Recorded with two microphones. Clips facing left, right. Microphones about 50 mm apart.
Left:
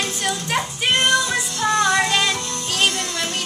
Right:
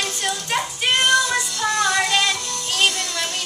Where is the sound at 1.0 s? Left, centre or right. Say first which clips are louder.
Right 2 dB; left.